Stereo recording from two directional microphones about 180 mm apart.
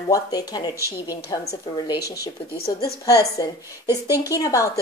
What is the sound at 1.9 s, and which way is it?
Speech, 60° left (ahead or behind).